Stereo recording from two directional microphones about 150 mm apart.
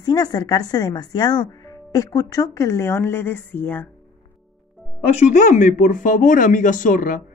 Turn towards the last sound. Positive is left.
turn(degrees=65)  # may be behind; listen again after turning